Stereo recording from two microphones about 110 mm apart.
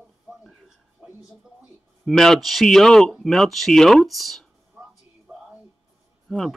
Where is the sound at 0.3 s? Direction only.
Centre (ahead or behind).